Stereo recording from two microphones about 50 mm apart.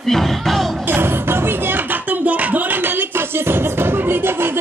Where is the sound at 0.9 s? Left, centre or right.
Right.